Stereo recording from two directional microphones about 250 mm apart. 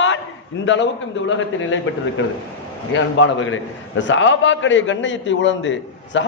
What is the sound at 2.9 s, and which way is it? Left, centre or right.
A man's voice, left.